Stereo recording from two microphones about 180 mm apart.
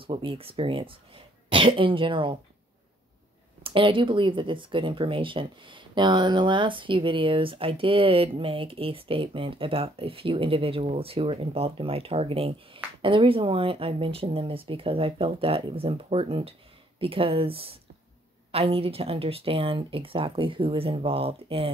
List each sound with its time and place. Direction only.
0.0 s speech: 30° right (ahead or behind)
3.6 s speech: 30° right (ahead or behind)